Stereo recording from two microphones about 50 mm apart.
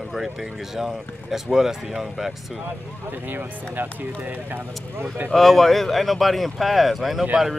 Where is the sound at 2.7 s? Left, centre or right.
Right.